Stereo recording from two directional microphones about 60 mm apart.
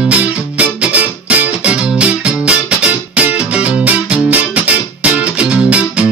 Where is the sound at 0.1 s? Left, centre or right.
Right.